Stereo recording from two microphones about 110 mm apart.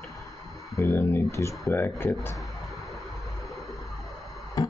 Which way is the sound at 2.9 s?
Centre (ahead or behind).